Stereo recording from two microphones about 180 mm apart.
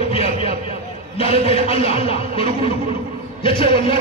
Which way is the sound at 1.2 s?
30° left (ahead or behind).